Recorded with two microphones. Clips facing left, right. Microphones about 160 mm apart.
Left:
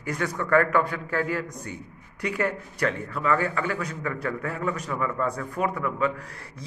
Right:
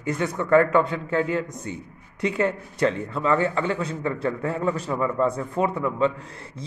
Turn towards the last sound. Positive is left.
turn(degrees=-25)  # may be behind; listen again after turning